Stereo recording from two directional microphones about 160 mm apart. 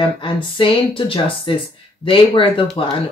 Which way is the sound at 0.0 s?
30° left (ahead or behind).